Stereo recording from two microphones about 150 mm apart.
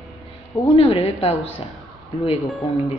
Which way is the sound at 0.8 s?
40° left (ahead or behind).